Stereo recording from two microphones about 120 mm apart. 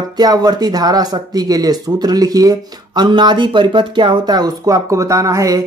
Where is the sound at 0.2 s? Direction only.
35° right (ahead or behind).